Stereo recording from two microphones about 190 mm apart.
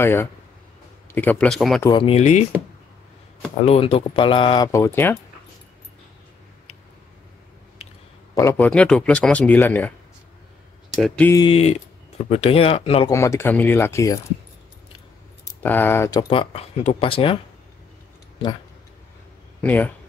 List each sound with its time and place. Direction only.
0.0 s speech: 10° left (ahead or behind)
1.8 s speech: 25° left (ahead or behind)
3.6 s speech: 30° left (ahead or behind)
4.6 s speech: 15° left (ahead or behind)
8.4 s speech: 10° left (ahead or behind)
11.0 s speech: centre (ahead or behind)
11.4 s speech: 30° left (ahead or behind)
13.1 s speech: 15° left (ahead or behind)
15.4 s speech: 10° left (ahead or behind); by 17.4 s 30° left (ahead or behind)
19.6 s speech: 10° left (ahead or behind)